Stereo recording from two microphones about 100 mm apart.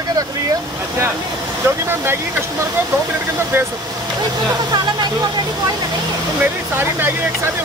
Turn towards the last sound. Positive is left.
turn(degrees=-20)  # may be behind; listen again after turning